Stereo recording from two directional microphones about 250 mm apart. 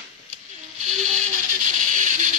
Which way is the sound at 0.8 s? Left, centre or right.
Right.